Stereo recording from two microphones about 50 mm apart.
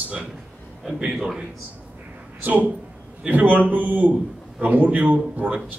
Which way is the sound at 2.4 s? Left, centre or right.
Right.